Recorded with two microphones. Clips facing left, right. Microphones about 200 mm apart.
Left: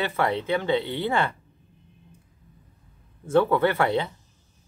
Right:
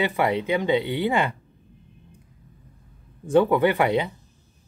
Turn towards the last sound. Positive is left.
turn(degrees=-15)  # may be behind; listen again after turning